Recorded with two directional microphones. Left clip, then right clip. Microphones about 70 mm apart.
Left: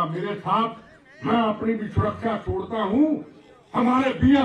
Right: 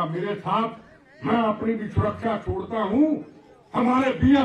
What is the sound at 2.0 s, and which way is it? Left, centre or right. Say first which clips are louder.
Speech: even; centre.